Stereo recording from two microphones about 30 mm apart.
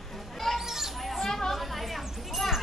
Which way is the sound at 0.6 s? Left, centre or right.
Centre.